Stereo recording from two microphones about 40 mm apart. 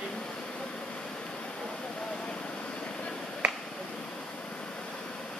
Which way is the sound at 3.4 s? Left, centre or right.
Right.